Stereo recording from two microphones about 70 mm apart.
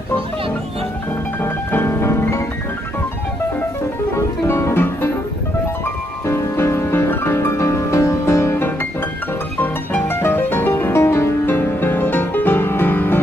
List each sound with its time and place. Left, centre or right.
1.4 s music: left
4.5 s music: left
6.2 s music: left
10.0 s music: left